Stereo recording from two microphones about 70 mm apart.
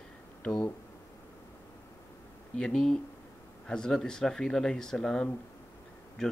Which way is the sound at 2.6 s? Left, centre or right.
Centre.